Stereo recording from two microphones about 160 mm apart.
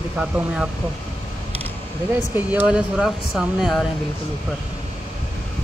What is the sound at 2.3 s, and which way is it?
Speech, 10° right (ahead or behind).